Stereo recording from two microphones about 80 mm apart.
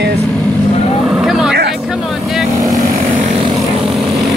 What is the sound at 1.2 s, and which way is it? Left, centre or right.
Vehicle, centre.